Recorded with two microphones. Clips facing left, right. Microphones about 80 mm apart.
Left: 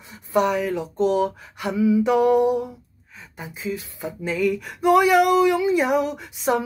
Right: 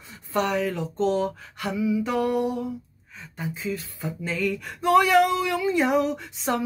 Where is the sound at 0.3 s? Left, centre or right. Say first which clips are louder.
Left 4 dB; centre.